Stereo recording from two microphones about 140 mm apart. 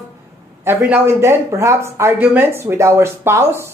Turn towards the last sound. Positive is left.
turn(degrees=-20)  # may be behind; listen again after turning